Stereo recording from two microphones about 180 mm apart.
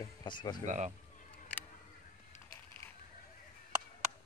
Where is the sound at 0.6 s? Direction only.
40° right (ahead or behind).